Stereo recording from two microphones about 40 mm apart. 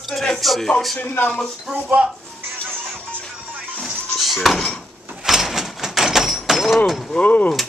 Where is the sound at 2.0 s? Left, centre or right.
Right.